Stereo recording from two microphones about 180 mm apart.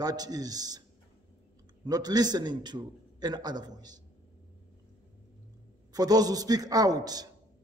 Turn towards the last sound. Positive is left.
turn(degrees=-20)  # may be behind; listen again after turning